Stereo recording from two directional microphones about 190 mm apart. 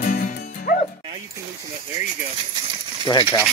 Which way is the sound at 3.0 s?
25° left (ahead or behind).